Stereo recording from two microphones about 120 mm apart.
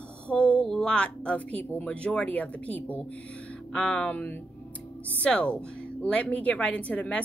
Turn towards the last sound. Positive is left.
turn(degrees=10)  # may be behind; listen again after turning